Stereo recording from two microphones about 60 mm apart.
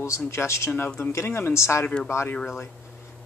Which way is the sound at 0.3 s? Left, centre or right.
Left.